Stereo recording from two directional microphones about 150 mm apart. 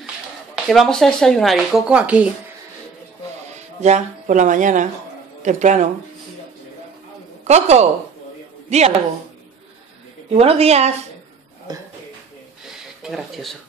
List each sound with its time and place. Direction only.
0.7 s speech: 5° left (ahead or behind)
3.5 s a woman's voice: 50° right (ahead or behind)
7.4 s a woman's voice: 45° right (ahead or behind)
10.3 s a woman's voice: 45° right (ahead or behind)
11.7 s speech: 25° right (ahead or behind)
13.0 s speech: centre (ahead or behind)